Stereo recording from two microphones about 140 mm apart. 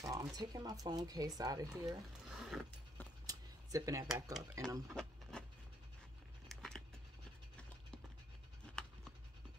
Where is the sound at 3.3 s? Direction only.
25° right (ahead or behind).